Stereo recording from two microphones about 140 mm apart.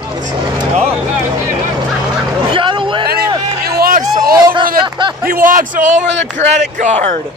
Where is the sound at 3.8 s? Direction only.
90° right.